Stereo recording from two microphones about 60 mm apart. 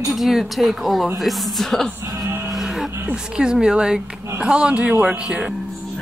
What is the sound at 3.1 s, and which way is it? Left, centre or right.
Speech, centre.